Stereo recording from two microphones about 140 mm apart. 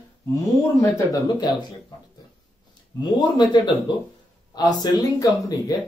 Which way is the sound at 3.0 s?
30° left (ahead or behind).